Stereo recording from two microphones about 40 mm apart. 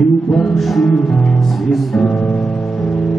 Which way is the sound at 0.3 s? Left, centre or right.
Centre.